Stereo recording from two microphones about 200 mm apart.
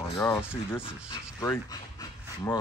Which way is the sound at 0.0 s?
15° left (ahead or behind).